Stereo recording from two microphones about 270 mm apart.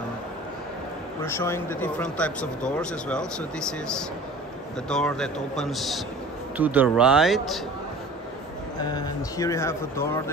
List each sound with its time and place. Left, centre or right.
1.2 s speech: centre
8.9 s speech: centre